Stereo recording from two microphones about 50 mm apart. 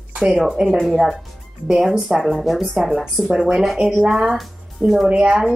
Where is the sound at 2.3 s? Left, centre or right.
Centre.